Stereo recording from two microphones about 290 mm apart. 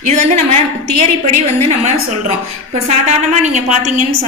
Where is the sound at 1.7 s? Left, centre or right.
Right.